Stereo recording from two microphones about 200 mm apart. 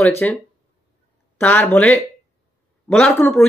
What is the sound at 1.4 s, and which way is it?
Speech, 10° left (ahead or behind).